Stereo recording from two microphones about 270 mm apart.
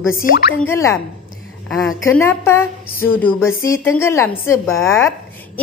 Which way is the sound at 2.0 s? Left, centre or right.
Centre.